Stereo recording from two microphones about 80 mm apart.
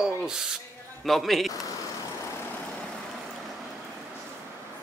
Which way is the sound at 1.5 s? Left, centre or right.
Left.